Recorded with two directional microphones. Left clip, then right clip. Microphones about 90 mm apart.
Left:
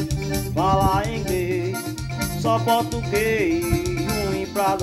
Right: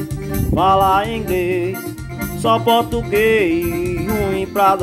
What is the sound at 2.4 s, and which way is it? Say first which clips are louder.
Music: right 6 dB; 60° right (ahead or behind).